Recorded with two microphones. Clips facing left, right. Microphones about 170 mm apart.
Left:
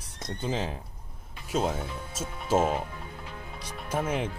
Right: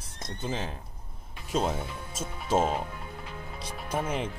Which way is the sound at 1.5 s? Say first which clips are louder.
Even; 5° left (ahead or behind).